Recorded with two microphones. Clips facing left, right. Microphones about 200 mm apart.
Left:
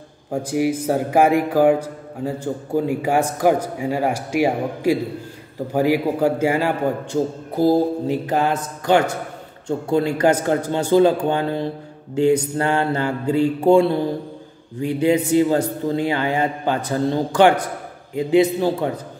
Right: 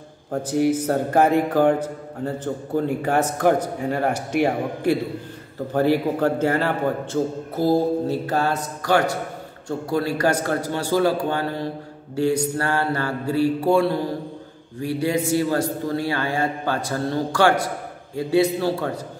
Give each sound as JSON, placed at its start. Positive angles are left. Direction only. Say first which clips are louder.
{"t": 0.3, "sound": "a man's voice", "louder": "even", "side_deg": 10}